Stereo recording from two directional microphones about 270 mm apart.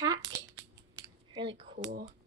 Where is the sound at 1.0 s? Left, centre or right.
Centre.